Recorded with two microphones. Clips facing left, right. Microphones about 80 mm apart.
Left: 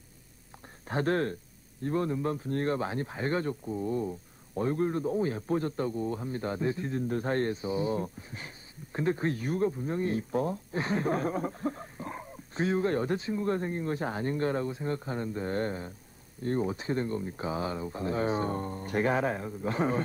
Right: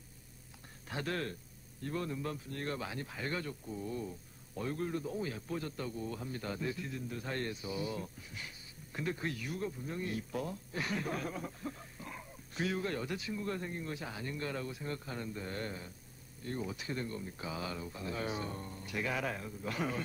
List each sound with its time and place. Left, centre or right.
0.8 s speech: left